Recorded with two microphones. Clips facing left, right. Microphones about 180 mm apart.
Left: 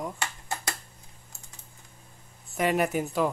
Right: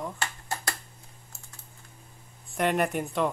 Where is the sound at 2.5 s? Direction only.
Centre (ahead or behind).